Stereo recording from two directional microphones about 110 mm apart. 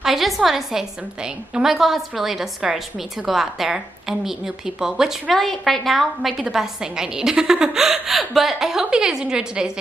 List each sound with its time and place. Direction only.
0.0 s a woman's voice: centre (ahead or behind)